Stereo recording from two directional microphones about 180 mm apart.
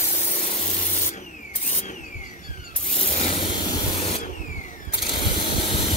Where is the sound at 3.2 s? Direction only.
35° left (ahead or behind).